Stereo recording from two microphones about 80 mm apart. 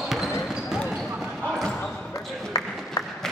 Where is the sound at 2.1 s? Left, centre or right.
Left.